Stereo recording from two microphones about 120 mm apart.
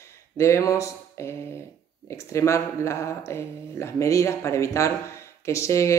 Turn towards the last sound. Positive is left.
turn(degrees=25)  # may be behind; listen again after turning